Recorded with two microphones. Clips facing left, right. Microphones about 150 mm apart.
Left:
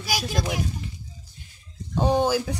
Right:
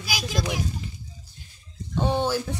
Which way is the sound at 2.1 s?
15° left (ahead or behind).